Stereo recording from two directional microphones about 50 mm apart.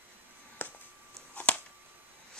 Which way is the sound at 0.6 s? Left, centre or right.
Left.